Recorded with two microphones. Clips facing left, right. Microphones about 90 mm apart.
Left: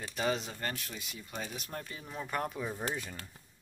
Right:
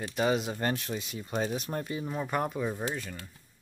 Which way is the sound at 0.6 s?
30° right (ahead or behind).